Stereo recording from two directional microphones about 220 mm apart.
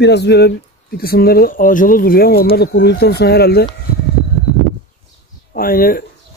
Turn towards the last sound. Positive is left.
turn(degrees=40)  # may be behind; listen again after turning